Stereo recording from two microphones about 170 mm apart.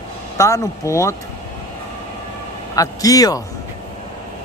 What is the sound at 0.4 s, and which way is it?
Speech, 15° left (ahead or behind).